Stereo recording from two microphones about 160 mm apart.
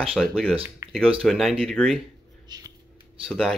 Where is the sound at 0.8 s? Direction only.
15° right (ahead or behind).